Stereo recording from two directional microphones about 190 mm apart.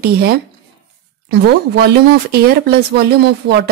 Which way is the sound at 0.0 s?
55° right (ahead or behind).